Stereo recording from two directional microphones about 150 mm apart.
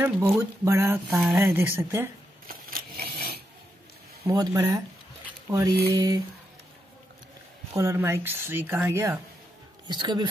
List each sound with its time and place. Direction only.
0.0 s speech: 15° right (ahead or behind)
1.1 s speech: centre (ahead or behind)
1.4 s speech: 15° right (ahead or behind)
2.4 s a sound: 75° right (ahead or behind)
4.3 s speech: 25° right (ahead or behind)
7.7 s speech: 20° right (ahead or behind)
9.8 s speech: 30° right (ahead or behind)